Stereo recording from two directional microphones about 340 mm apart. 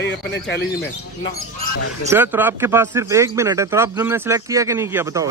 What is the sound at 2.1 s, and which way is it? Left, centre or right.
Speech, centre.